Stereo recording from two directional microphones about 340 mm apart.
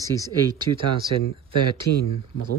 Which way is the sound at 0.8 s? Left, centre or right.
Right.